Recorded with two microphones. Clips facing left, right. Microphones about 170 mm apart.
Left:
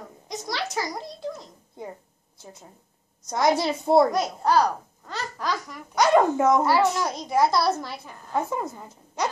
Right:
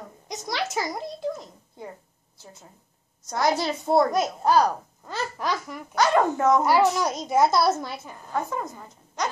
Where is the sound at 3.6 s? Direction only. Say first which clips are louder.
Left 3 dB; 25° left (ahead or behind).